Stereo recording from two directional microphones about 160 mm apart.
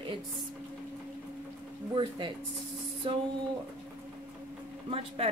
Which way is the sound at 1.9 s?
30° right (ahead or behind).